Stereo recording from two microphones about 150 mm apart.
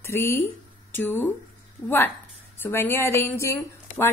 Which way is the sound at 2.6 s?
15° left (ahead or behind).